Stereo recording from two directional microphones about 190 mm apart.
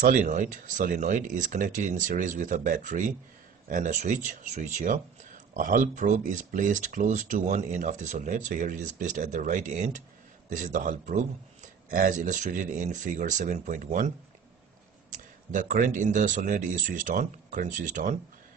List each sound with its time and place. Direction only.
0.0 s speech: 40° right (ahead or behind)
15.1 s speech: 40° right (ahead or behind)